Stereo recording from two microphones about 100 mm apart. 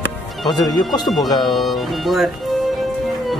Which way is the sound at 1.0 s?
Centre (ahead or behind).